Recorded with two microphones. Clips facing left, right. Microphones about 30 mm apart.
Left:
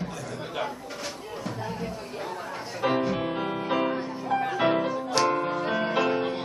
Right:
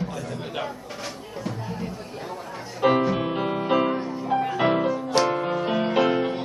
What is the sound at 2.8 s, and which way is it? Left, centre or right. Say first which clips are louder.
Music: right 5 dB; centre.